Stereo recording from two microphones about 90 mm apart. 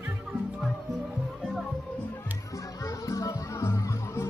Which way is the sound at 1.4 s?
Centre (ahead or behind).